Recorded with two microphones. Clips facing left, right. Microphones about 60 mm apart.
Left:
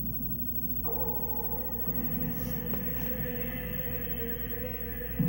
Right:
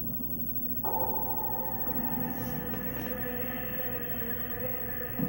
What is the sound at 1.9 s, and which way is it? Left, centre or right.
Music, right.